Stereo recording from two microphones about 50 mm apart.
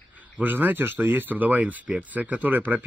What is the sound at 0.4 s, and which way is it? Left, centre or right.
Speech, right.